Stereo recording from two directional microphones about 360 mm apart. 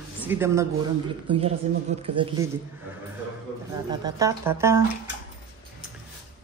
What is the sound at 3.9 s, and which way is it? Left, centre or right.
Speech, centre.